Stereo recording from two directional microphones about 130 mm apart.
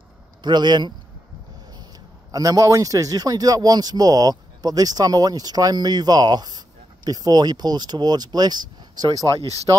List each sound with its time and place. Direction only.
0.4 s speech: 35° right (ahead or behind)
2.3 s speech: 25° right (ahead or behind)